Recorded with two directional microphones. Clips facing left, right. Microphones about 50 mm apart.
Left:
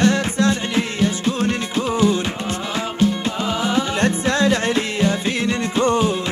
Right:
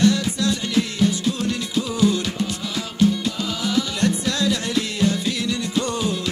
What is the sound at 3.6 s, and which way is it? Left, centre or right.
Music, left.